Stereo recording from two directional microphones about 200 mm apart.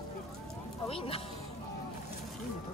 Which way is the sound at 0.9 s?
30° left (ahead or behind).